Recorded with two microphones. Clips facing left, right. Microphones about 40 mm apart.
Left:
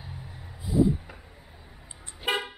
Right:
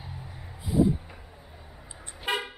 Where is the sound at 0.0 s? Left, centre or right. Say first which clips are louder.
Right 1 dB; centre.